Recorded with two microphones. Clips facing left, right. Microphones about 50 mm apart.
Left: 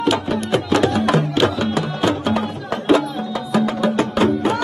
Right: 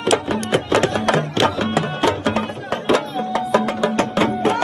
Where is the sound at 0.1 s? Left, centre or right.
Right.